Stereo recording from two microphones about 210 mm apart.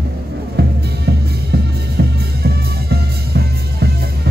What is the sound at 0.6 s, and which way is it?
Music, 50° right (ahead or behind).